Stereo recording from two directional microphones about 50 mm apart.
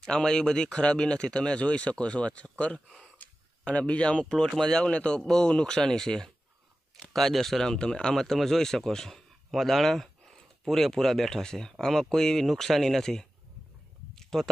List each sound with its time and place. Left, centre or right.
0.0 s speech: centre
3.6 s speech: left
14.1 s a sound: centre